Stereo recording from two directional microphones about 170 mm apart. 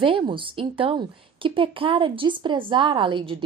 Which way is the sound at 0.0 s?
30° right (ahead or behind).